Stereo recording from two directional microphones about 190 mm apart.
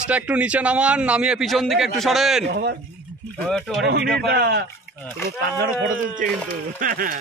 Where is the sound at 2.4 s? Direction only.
60° right (ahead or behind).